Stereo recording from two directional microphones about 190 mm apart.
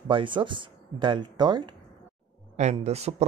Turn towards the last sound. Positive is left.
turn(degrees=-35)  # may be behind; listen again after turning